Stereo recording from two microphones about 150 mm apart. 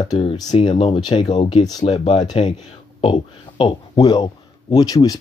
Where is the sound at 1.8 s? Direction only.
40° left (ahead or behind).